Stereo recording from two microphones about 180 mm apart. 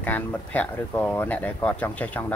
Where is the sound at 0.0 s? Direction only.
10° left (ahead or behind).